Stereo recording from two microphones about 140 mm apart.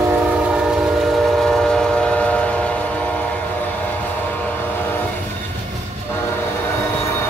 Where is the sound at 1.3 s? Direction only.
5° left (ahead or behind).